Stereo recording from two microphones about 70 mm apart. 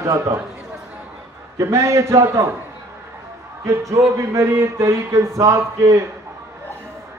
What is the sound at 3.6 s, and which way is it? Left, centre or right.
Speech, right.